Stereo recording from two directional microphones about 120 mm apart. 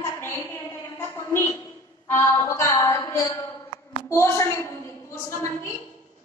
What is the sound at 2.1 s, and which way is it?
Music, 20° left (ahead or behind).